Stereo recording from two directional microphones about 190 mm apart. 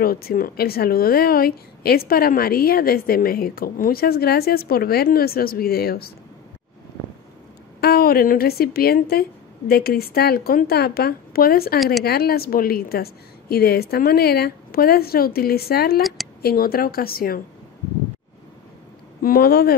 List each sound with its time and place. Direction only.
0.0 s a woman's voice: 50° left (ahead or behind)
7.8 s a woman's voice: 55° left (ahead or behind)
16.0 s speech: centre (ahead or behind)
16.4 s a woman's voice: 50° left (ahead or behind)
19.2 s speech: 55° left (ahead or behind)